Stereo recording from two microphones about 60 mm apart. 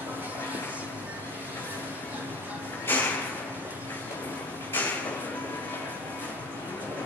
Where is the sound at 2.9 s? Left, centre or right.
Left.